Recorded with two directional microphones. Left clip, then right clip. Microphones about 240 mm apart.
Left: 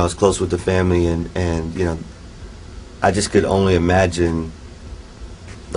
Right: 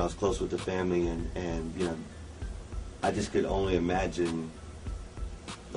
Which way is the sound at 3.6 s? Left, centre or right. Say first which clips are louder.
Left 13 dB; left.